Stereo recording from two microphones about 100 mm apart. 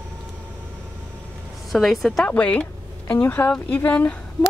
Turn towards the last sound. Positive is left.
turn(degrees=15)  # may be behind; listen again after turning